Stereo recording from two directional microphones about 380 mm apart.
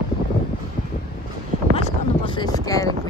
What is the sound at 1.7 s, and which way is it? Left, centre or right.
Speech, centre.